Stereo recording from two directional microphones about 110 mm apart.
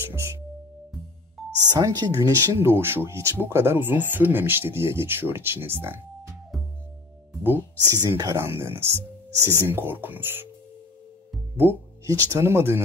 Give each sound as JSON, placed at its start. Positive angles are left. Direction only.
{"t": 0.1, "sound": "music", "side_deg": -25}
{"t": 1.7, "sound": "speech", "side_deg": -35}
{"t": 7.4, "sound": "speech", "side_deg": -20}
{"t": 11.5, "sound": "speech", "side_deg": -25}